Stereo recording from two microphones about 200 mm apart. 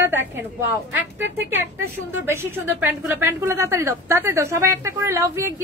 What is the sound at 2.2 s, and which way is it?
A woman's voice, 10° right (ahead or behind).